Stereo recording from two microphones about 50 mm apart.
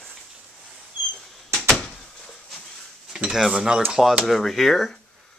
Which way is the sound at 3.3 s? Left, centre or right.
Centre.